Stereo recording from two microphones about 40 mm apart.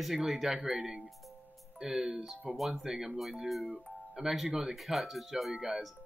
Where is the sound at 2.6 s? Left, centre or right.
Centre.